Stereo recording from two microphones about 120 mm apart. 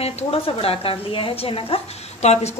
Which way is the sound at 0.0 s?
55° left (ahead or behind).